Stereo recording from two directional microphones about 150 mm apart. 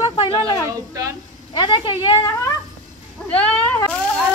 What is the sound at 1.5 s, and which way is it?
Speech, 30° left (ahead or behind).